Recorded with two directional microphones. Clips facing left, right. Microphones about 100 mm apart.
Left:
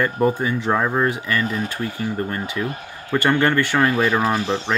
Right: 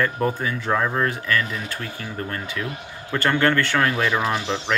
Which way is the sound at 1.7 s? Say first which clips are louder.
Left 6 dB; 15° left (ahead or behind).